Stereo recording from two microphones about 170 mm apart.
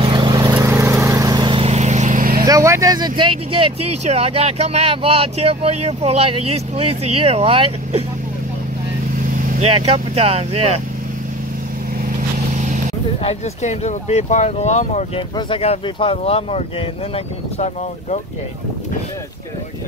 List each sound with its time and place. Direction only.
0.0 s vehicle: 25° right (ahead or behind); by 2.4 s 55° right (ahead or behind)
2.4 s speech: 20° right (ahead or behind)
9.6 s speech: 35° right (ahead or behind)
12.5 s vehicle: 50° right (ahead or behind)
13.2 s speech: 40° left (ahead or behind)
15.1 s speech: 30° left (ahead or behind)